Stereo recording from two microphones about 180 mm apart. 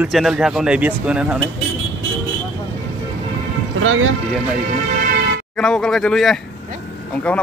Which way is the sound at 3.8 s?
90° right.